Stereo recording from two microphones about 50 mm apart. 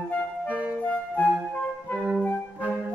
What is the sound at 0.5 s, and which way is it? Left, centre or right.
Music, right.